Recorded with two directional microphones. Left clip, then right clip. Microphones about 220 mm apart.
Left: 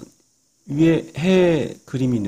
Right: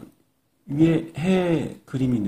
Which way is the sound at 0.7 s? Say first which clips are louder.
Left 3 dB; 45° left (ahead or behind).